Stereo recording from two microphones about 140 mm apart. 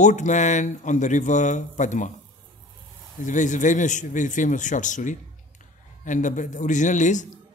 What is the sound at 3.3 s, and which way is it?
Speech, 60° left (ahead or behind).